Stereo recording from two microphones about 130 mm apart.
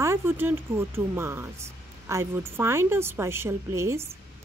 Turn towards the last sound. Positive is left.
turn(degrees=-20)  # may be behind; listen again after turning